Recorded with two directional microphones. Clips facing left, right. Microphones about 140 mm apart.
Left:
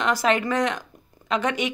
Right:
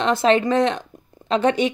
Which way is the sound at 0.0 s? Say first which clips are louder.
Right 5 dB; 25° right (ahead or behind).